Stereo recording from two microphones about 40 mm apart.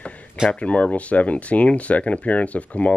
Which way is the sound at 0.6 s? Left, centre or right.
Left.